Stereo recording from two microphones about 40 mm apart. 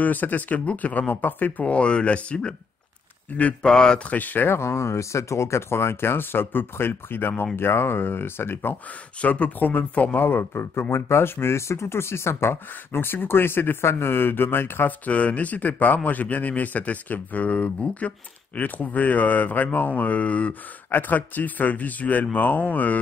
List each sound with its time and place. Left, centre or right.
0.0 s speech: left
1.6 s speech: left
3.3 s a man's voice: left
3.6 s speech: centre
4.1 s speech: left
5.6 s speech: left
7.5 s speech: left
9.2 s speech: left
10.1 s speech: left
14.9 s a man's voice: left
18.6 s speech: left
20.9 s speech: left